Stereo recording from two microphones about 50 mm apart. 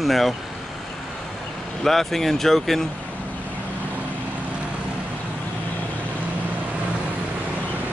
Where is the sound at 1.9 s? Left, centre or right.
Centre.